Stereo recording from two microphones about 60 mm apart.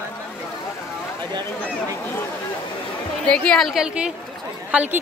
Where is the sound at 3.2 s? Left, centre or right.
Centre.